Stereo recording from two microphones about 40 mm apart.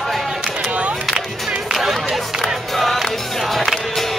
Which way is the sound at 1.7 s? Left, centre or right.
Centre.